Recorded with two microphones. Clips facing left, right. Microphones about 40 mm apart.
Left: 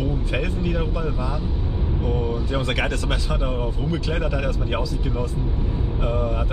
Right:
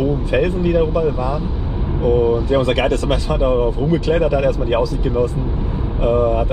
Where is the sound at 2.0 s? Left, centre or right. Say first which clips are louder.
Right 12 dB; right.